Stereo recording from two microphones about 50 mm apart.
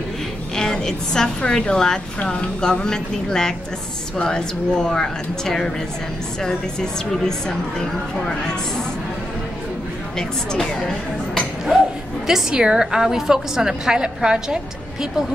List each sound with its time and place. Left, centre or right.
0.6 s a woman's voice: centre
10.1 s speech: centre
12.3 s a woman's voice: centre